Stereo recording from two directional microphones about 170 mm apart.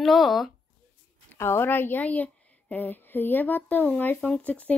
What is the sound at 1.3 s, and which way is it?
Speech, 15° left (ahead or behind).